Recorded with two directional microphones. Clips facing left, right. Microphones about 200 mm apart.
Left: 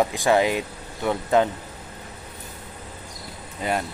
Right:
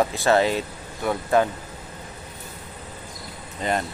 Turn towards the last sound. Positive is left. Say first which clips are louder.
# right 1 dB
turn(degrees=10)  # may be behind; listen again after turning